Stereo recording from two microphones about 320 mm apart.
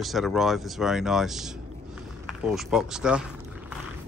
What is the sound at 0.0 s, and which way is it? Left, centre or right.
Speech, centre.